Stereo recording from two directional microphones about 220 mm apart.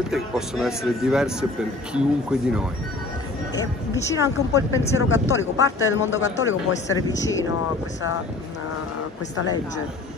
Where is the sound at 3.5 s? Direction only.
15° left (ahead or behind).